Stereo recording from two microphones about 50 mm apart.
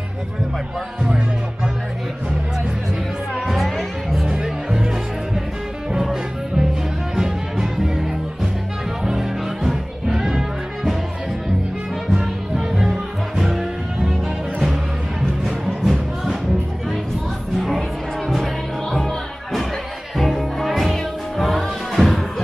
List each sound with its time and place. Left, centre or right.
1.0 s music: centre
3.3 s music: centre
7.2 s music: centre
12.1 s music: centre
15.4 s music: centre
17.6 s music: centre